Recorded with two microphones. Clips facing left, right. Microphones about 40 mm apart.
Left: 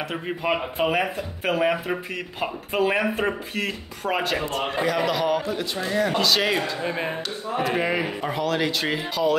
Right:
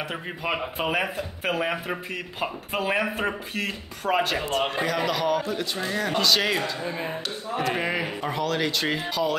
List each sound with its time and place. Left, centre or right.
0.1 s speech: centre
6.8 s speech: left
7.5 s speech: centre